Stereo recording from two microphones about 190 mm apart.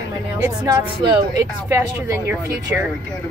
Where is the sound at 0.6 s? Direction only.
15° right (ahead or behind).